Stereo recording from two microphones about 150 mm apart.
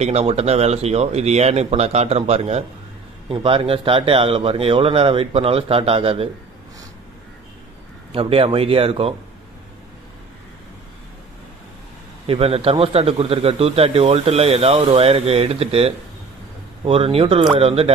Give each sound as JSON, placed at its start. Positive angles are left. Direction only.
{"t": 0.0, "sound": "a man's voice", "side_deg": -45}
{"t": 8.1, "sound": "a man's voice", "side_deg": -35}
{"t": 12.3, "sound": "a man's voice", "side_deg": -40}